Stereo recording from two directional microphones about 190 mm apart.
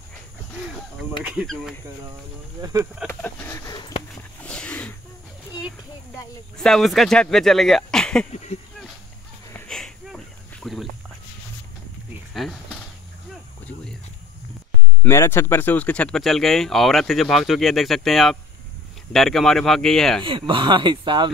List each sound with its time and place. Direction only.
1.2 s speech: 5° right (ahead or behind)
2.6 s speech: 15° right (ahead or behind)
3.1 s speech: 5° left (ahead or behind); by 4.0 s 25° left (ahead or behind)
4.4 s roaring cats: 5° left (ahead or behind)
6.6 s speech: centre (ahead or behind)
8.3 s speech: 35° left (ahead or behind)
9.7 s a sound: 5° left (ahead or behind)
12.4 s speech: centre (ahead or behind)
13.3 s a sound: 5° left (ahead or behind)
15.0 s speech: 15° left (ahead or behind)
20.2 s speech: 25° right (ahead or behind)